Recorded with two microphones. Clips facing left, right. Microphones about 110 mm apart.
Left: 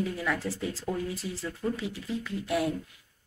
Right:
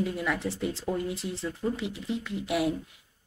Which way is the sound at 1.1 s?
70° right (ahead or behind).